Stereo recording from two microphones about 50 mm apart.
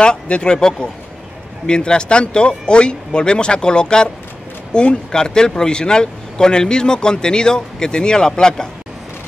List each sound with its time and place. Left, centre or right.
0.0 s speech: centre